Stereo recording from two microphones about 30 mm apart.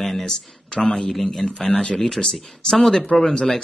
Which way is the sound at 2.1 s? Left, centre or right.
Left.